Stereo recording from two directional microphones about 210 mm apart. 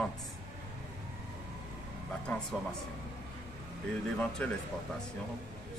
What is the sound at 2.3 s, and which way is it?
Speech, 5° left (ahead or behind).